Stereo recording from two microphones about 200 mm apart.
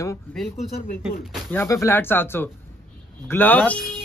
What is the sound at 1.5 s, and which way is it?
A man's voice, 10° left (ahead or behind).